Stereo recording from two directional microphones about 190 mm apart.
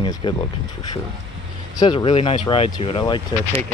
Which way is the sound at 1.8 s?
25° left (ahead or behind).